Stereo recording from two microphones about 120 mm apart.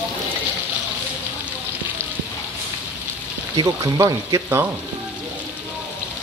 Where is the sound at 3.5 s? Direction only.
35° right (ahead or behind).